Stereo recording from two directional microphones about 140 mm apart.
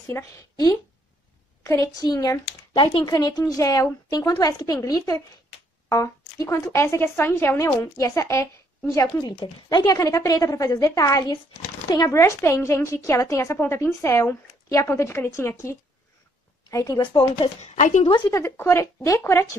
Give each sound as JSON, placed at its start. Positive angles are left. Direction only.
{"t": 0.1, "sound": "speech", "side_deg": 25}
{"t": 2.7, "sound": "speech", "side_deg": 35}
{"t": 6.4, "sound": "speech", "side_deg": 20}
{"t": 9.4, "sound": "speech", "side_deg": 30}
{"t": 16.7, "sound": "speech", "side_deg": 25}
{"t": 17.6, "sound": "speech", "side_deg": 55}
{"t": 18.0, "sound": "speech", "side_deg": 35}
{"t": 18.3, "sound": "speech", "side_deg": 20}